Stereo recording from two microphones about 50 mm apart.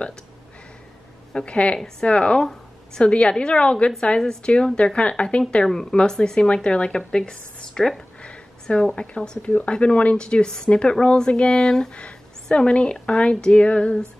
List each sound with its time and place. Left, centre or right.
1.3 s speech: left
4.2 s speech: centre
4.5 s speech: centre
5.7 s speech: centre
8.2 s a sound: centre
8.9 s speech: left